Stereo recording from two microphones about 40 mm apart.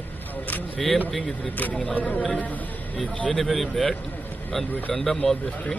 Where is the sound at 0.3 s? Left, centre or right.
Left.